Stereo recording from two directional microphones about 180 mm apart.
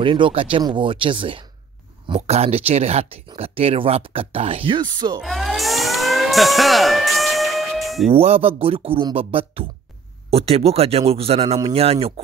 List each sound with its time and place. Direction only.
0.0 s speech: 30° right (ahead or behind)
5.2 s siren: centre (ahead or behind)
8.1 s speech: 35° right (ahead or behind)